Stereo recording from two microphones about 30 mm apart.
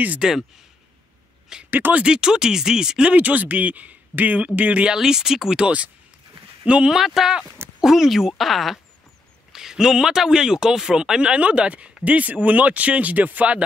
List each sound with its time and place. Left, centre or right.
0.2 s speech: centre
1.7 s speech: right
2.0 s speech: right
3.2 s speech: right
4.4 s speech: right
4.9 s speech: centre
6.6 s speech: right
6.9 s speech: centre
7.2 s speech: right
8.4 s speech: centre
9.5 s a sound: centre
10.1 s speech: centre
11.4 s speech: right
12.0 s speech: right